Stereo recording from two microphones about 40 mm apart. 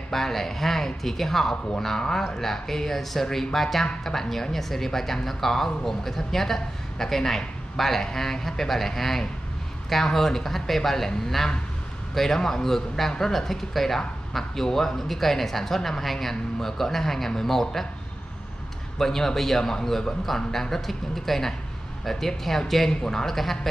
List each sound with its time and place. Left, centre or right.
0.1 s a man's voice: centre
18.9 s speech: centre
22.8 s speech: centre
23.2 s a man's voice: centre